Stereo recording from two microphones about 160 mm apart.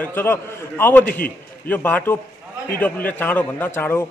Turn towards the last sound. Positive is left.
turn(degrees=15)  # may be behind; listen again after turning